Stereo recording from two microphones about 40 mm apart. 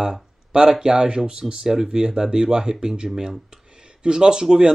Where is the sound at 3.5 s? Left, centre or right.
Right.